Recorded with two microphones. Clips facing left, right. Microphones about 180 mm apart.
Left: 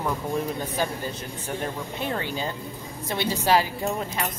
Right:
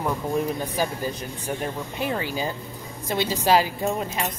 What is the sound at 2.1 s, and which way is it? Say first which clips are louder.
A woman's voice: right 1 dB; 10° right (ahead or behind).